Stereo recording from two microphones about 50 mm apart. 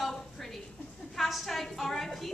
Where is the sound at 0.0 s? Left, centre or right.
Centre.